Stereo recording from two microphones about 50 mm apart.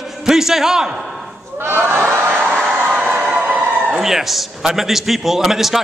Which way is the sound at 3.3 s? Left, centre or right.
Right.